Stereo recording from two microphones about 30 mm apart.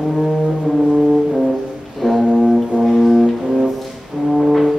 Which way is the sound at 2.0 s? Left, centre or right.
Centre.